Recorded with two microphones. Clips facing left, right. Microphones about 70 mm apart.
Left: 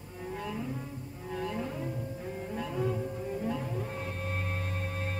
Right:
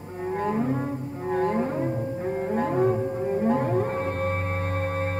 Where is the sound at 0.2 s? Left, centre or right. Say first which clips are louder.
Right 11 dB; right.